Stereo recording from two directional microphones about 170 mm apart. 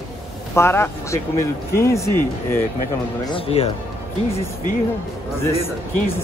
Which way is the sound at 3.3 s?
35° left (ahead or behind).